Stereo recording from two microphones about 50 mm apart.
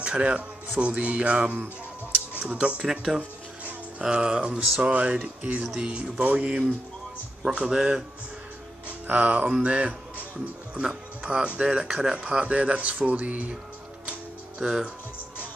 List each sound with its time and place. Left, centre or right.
0.0 s speech: right
2.9 s speech: centre
9.0 s music: right
9.6 s speech: right
11.9 s speech: centre
12.2 s speech: right
14.6 s speech: centre